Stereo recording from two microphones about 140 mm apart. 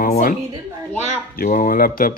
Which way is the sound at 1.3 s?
80° left.